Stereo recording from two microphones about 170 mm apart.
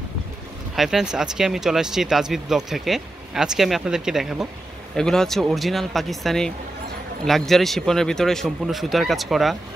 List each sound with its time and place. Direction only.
0.7 s speech: centre (ahead or behind)